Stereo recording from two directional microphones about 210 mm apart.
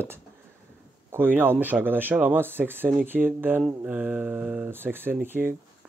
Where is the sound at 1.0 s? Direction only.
10° right (ahead or behind).